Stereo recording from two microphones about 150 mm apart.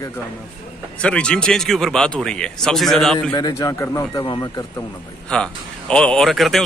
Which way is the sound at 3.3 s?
25° left (ahead or behind).